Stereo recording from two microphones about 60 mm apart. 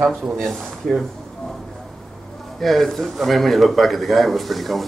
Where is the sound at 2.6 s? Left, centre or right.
Centre.